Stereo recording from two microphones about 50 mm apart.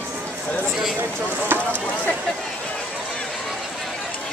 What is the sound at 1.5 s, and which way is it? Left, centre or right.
Speech, right.